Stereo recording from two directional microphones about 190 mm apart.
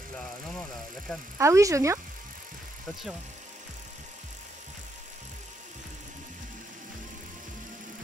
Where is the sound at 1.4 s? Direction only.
15° right (ahead or behind).